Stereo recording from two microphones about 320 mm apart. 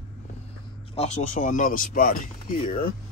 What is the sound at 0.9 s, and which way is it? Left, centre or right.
Speech, left.